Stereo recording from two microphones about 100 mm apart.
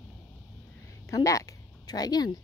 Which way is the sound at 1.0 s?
35° left (ahead or behind).